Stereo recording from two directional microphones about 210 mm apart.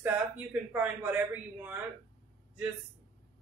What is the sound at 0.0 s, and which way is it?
Speech, 10° right (ahead or behind).